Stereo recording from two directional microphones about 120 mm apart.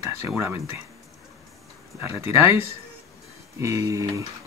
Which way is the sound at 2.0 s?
20° right (ahead or behind).